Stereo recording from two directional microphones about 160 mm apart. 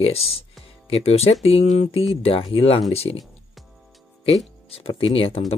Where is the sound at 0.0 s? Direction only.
40° left (ahead or behind).